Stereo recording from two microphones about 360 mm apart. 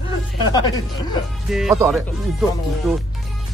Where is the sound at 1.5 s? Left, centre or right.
Centre.